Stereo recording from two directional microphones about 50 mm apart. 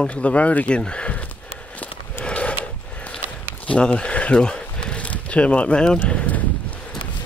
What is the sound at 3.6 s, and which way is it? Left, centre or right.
Speech, left.